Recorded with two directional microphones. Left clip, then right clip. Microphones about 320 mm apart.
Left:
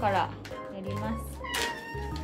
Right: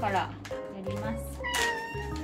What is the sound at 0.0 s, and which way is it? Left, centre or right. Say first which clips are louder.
Speech: left 2 dB; centre.